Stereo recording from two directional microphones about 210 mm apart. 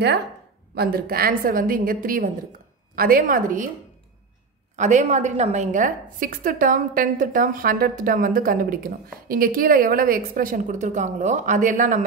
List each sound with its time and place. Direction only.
0.7 s a woman's voice: 45° right (ahead or behind)
4.7 s a woman's voice: 35° right (ahead or behind)